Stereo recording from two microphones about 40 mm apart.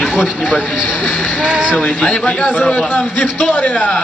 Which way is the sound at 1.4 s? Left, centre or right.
Right.